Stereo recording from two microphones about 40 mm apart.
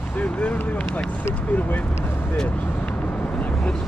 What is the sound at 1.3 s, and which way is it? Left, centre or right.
Speech, left.